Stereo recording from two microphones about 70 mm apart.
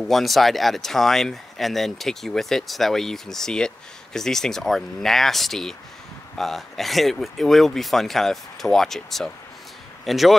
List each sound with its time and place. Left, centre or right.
0.0 s speech: centre